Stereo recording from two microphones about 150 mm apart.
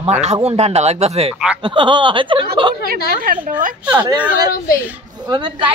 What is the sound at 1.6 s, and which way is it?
Speech, 35° right (ahead or behind).